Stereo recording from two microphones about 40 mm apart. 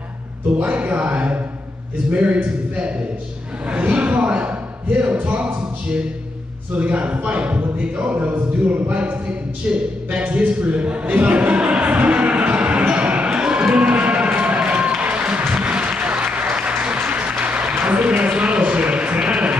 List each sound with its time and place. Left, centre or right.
0.7 s a man's voice: right
9.7 s a sound: right
15.0 s applause: right